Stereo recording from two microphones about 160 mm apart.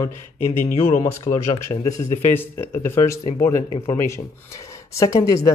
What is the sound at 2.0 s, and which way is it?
Speech, 15° left (ahead or behind).